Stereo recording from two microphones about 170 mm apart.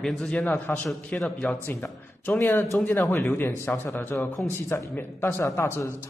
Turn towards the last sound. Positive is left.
turn(degrees=15)  # may be behind; listen again after turning